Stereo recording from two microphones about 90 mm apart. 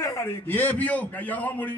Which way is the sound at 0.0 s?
35° left (ahead or behind).